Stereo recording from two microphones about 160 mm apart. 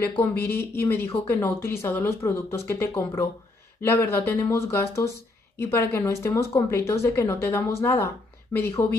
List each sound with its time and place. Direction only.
0.0 s speech: 15° left (ahead or behind)